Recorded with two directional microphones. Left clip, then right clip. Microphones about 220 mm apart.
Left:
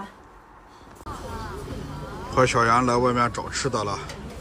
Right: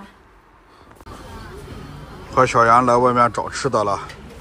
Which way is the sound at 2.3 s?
5° left (ahead or behind).